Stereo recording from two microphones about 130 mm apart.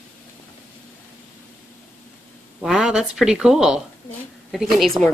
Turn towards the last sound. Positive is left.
turn(degrees=0)  # may be behind; listen again after turning